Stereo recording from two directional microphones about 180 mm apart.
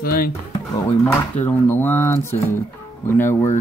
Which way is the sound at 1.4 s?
10° left (ahead or behind).